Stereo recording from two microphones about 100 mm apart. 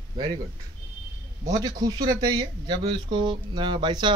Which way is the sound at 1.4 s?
40° right (ahead or behind).